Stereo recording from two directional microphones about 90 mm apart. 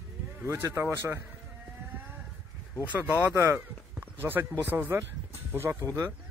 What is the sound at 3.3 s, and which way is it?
Speech, 30° right (ahead or behind).